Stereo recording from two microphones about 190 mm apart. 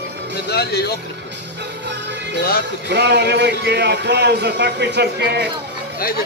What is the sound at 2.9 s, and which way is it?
A man's voice, 60° right (ahead or behind).